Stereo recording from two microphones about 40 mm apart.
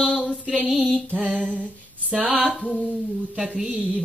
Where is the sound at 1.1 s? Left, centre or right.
Right.